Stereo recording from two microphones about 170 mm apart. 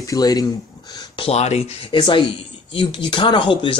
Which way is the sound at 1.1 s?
35° left (ahead or behind).